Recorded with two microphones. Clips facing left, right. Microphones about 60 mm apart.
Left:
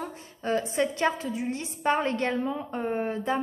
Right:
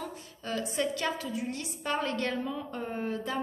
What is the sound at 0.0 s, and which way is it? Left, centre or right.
A woman's voice, left.